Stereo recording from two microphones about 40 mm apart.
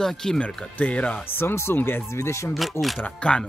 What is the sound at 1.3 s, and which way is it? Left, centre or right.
Speech, left.